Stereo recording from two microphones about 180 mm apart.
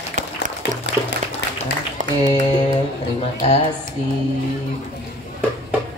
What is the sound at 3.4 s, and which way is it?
Speech, 30° left (ahead or behind).